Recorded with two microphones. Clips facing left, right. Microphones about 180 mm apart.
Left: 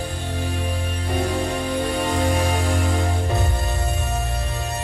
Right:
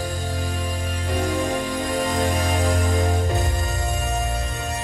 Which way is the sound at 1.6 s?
35° left (ahead or behind).